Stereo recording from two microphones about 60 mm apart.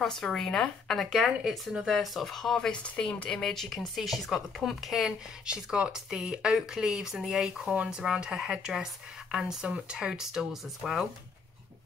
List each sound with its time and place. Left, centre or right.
0.0 s speech: centre
1.2 s speech: centre
2.8 s speech: centre
5.5 s speech: centre
7.6 s speech: right